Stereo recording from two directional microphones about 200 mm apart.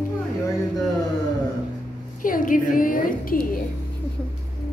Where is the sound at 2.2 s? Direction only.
40° left (ahead or behind).